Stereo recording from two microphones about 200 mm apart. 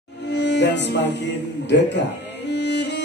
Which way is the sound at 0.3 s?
60° left (ahead or behind).